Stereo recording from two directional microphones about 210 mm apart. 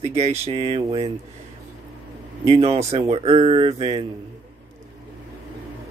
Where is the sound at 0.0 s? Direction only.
30° right (ahead or behind).